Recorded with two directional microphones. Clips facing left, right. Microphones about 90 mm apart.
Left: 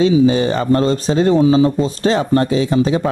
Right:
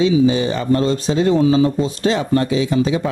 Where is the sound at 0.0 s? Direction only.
45° left (ahead or behind).